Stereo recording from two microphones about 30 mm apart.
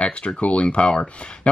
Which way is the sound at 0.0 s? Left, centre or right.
Left.